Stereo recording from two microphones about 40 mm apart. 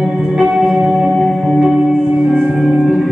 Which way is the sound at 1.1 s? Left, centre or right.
Centre.